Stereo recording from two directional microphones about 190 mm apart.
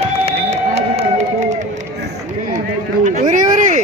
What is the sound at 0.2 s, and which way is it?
Music, 35° right (ahead or behind).